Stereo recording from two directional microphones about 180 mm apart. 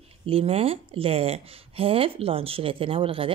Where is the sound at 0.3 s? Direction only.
30° right (ahead or behind).